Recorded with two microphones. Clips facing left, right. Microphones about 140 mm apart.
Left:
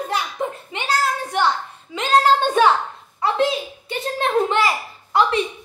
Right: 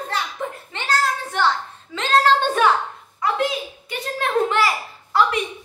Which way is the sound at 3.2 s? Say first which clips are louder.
Left 3 dB; 30° left (ahead or behind).